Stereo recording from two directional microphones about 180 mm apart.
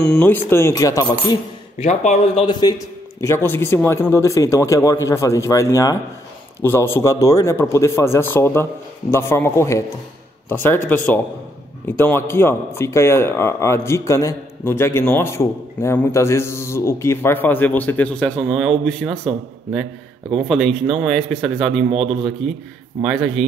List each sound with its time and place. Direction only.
0.1 s a man's voice: 10° left (ahead or behind)
1.8 s a man's voice: 35° left (ahead or behind)
2.6 s a man's voice: 25° left (ahead or behind); by 23.4 s centre (ahead or behind)